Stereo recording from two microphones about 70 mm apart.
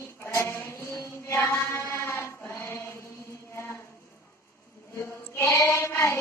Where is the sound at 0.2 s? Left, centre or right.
Left.